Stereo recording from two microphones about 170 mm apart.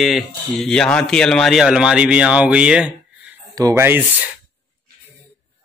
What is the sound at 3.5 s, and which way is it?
Speech, 20° right (ahead or behind).